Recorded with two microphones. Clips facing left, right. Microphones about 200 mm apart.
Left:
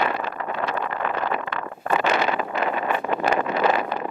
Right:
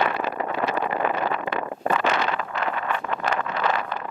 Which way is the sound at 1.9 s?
10° left (ahead or behind).